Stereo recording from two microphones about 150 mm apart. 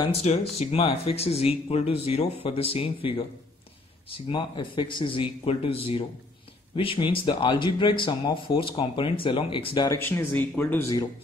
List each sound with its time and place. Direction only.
0.1 s speech: 45° left (ahead or behind)
4.3 s speech: 30° left (ahead or behind)
9.8 s speech: 15° left (ahead or behind)